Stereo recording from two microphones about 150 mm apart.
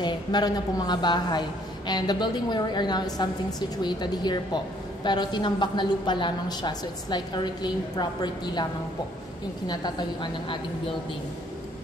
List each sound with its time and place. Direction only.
0.0 s a woman's voice: 30° left (ahead or behind)
9.7 s a woman's voice: 30° left (ahead or behind)